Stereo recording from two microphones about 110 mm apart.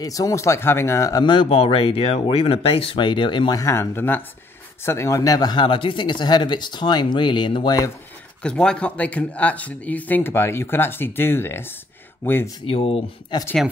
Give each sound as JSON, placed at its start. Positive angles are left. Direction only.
{"t": 0.0, "sound": "speech", "side_deg": 30}
{"t": 1.2, "sound": "speech", "side_deg": 50}
{"t": 3.5, "sound": "speech", "side_deg": 25}
{"t": 8.4, "sound": "speech", "side_deg": 10}
{"t": 12.6, "sound": "speech", "side_deg": 60}